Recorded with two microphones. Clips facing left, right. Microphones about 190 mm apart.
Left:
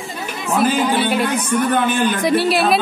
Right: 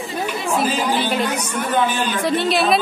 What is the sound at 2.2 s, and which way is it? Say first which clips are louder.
Speech: left 1 dB; 5° left (ahead or behind).